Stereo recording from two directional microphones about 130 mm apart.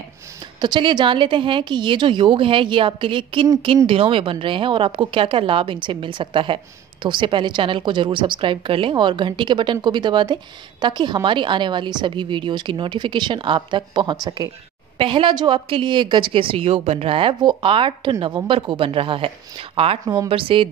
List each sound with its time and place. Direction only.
0.6 s a woman's voice: 35° right (ahead or behind)